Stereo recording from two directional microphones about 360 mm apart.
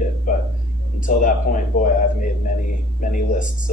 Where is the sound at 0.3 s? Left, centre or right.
Left.